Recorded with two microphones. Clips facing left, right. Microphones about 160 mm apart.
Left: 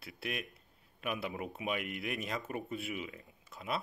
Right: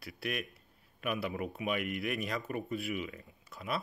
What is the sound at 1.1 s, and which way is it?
Speech, 20° left (ahead or behind).